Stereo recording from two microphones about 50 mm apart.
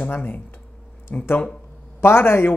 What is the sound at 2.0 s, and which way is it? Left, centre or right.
Speech, left.